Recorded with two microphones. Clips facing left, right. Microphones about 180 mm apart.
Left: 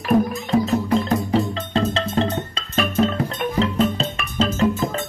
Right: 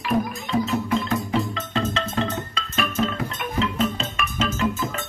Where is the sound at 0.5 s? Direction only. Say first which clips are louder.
Left 3 dB; 35° left (ahead or behind).